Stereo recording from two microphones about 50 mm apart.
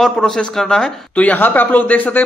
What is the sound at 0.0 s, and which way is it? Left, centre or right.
Speech, centre.